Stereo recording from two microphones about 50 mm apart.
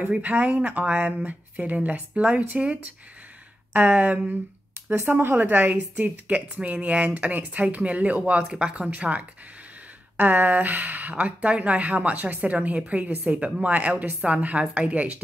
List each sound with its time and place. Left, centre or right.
0.1 s speech: right
5.4 s speech: right